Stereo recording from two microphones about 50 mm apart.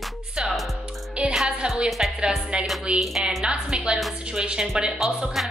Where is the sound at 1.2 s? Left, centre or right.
Right.